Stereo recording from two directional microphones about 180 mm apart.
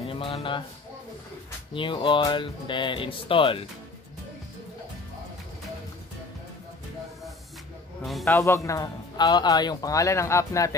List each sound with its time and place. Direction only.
0.0 s music: 30° left (ahead or behind)
1.7 s speech: 30° left (ahead or behind)
8.0 s a man's voice: centre (ahead or behind)
8.3 s speech: 15° left (ahead or behind)